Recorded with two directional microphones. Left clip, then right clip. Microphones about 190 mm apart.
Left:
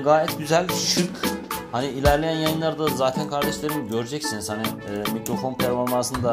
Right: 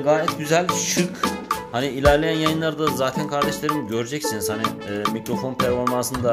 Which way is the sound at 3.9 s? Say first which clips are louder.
Right 2 dB; 20° right (ahead or behind).